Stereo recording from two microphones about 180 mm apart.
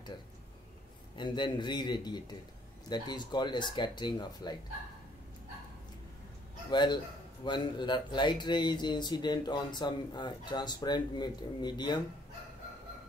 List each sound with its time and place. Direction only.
1.1 s speech: 25° left (ahead or behind)
6.7 s speech: 25° left (ahead or behind)